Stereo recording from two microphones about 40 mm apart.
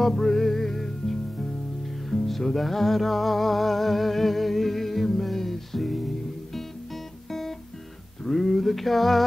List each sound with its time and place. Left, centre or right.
0.0 s music: centre
7.2 s guitar: centre
8.2 s a sound: centre